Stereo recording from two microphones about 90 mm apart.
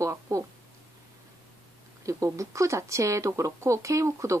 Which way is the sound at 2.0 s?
35° right (ahead or behind).